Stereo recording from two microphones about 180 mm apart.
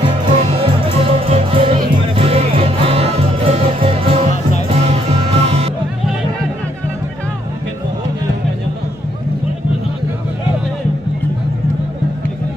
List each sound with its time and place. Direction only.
0.2 s music: 30° right (ahead or behind)